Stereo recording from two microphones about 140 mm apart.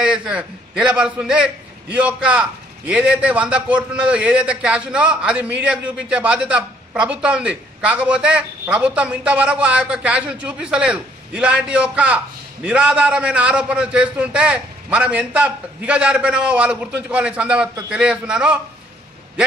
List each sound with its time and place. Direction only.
0.0 s a man's voice: 5° right (ahead or behind)